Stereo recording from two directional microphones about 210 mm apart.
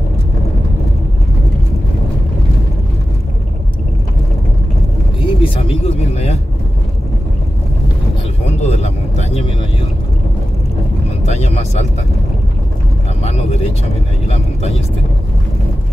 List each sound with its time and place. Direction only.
5.2 s vehicle: 25° left (ahead or behind)
8.5 s vehicle: 30° left (ahead or behind)
11.2 s a sound: 30° left (ahead or behind)
13.2 s vehicle: 30° left (ahead or behind)